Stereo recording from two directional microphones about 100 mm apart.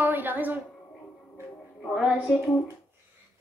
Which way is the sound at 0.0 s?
20° right (ahead or behind).